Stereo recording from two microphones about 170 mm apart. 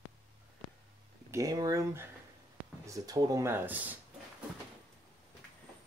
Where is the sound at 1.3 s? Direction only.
20° right (ahead or behind).